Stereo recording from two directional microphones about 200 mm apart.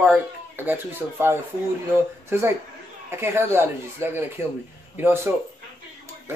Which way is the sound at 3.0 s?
10° right (ahead or behind).